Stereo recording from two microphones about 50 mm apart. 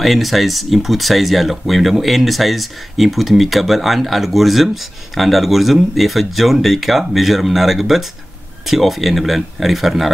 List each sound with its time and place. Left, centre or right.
0.0 s speech: centre